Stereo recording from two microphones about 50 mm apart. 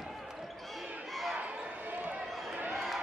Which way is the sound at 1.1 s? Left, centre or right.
Centre.